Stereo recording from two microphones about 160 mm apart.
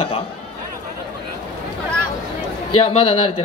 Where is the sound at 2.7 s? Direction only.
35° left (ahead or behind).